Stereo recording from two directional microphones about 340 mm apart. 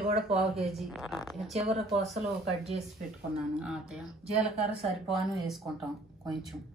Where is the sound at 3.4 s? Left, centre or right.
Centre.